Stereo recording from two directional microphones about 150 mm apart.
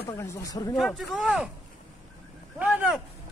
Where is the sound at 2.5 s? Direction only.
10° right (ahead or behind).